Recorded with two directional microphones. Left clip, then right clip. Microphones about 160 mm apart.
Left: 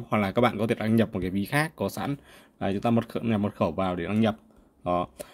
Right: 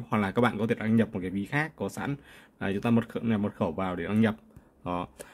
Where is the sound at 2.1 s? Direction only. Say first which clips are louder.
Left 2 dB; 10° left (ahead or behind).